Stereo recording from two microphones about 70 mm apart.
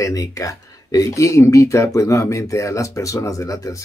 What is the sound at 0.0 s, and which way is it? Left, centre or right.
Speech, left.